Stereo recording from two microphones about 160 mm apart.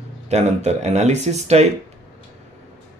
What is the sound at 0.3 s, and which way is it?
Speech, 45° right (ahead or behind).